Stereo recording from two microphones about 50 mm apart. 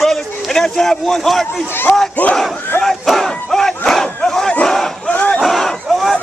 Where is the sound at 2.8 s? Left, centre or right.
Centre.